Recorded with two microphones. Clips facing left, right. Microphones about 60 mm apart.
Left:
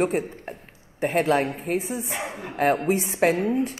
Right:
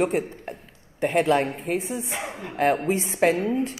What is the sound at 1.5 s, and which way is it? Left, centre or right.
Speech, left.